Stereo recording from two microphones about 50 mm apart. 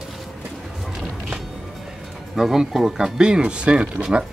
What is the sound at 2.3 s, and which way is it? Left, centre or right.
Speech, centre.